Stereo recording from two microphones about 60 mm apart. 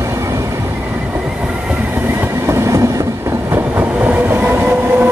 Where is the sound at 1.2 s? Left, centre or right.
Centre.